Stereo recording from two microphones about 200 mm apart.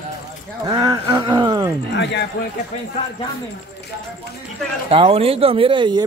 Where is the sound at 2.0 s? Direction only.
60° left (ahead or behind).